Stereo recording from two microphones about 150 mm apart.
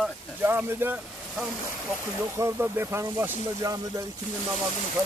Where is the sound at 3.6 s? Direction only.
25° right (ahead or behind).